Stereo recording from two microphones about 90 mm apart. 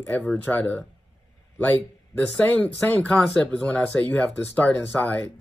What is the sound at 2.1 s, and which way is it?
Speech, 15° left (ahead or behind).